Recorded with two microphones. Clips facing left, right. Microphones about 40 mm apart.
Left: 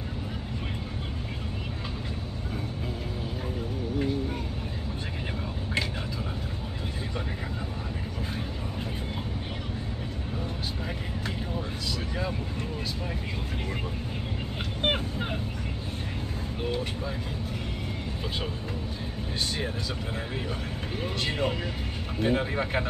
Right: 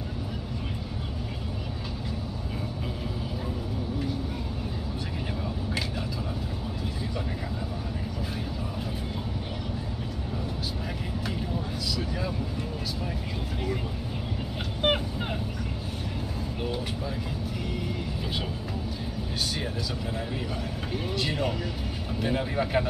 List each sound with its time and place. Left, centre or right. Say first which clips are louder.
14.8 s vehicle: right 2 dB; centre
21.2 s music: left 1 dB; left
22.2 s a sound: left 2 dB; left